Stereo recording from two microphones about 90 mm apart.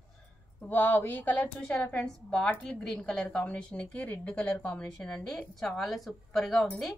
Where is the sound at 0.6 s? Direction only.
20° left (ahead or behind).